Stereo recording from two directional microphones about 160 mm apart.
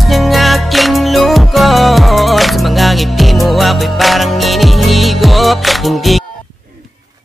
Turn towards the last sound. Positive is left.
turn(degrees=0)  # may be behind; listen again after turning